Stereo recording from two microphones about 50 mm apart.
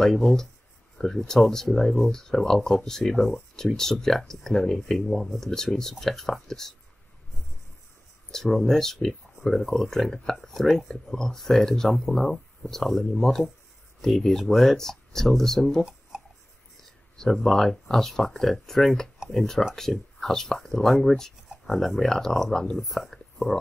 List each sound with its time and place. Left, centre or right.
0.0 s speech: centre
8.3 s speech: centre
16.1 s a sound: centre
17.2 s speech: centre